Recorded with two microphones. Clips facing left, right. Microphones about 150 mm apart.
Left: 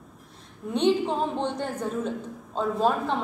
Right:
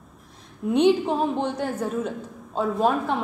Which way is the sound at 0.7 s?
10° right (ahead or behind).